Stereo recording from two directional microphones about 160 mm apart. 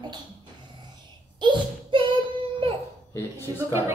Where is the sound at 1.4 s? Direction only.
30° right (ahead or behind).